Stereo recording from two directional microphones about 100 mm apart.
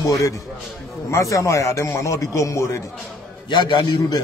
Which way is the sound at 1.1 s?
30° left (ahead or behind).